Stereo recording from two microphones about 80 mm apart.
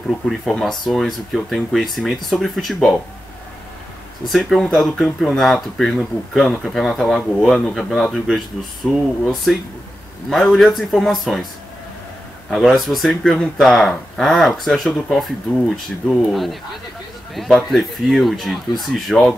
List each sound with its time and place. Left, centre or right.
0.3 s speech: centre
4.3 s speech: centre
12.4 s a man's voice: centre